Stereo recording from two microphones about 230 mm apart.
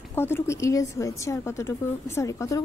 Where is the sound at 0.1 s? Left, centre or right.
Centre.